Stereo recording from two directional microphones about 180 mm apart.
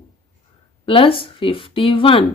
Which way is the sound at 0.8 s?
30° left (ahead or behind).